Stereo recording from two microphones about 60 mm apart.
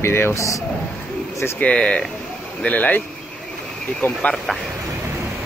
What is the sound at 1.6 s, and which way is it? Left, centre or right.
Speech, centre.